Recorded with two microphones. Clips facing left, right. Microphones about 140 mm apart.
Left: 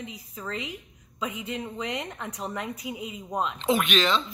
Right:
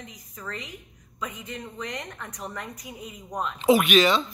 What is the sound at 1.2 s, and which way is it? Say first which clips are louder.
Speech: left 3 dB; 15° left (ahead or behind).